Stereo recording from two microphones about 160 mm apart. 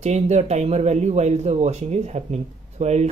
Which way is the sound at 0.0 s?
45° right (ahead or behind).